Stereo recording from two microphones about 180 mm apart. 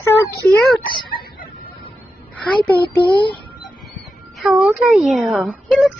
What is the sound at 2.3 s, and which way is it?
Speech, 10° left (ahead or behind).